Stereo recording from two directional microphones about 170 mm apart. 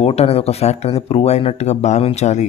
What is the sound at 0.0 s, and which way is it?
Speech, 40° left (ahead or behind).